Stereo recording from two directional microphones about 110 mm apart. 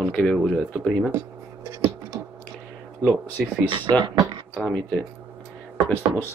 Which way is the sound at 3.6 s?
45° right (ahead or behind).